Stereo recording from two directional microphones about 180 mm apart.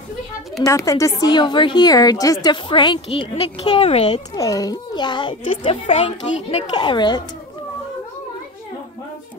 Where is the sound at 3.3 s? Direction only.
35° left (ahead or behind).